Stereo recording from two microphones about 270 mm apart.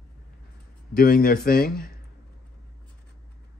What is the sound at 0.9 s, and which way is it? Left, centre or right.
Speech, left.